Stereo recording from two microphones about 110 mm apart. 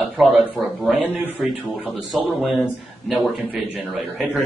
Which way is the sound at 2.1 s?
5° right (ahead or behind).